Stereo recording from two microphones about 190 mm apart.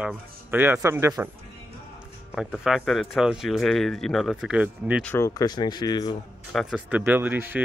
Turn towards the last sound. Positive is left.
turn(degrees=-10)  # may be behind; listen again after turning